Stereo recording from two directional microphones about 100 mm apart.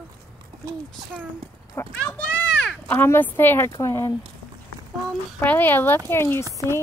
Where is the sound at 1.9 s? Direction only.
10° left (ahead or behind).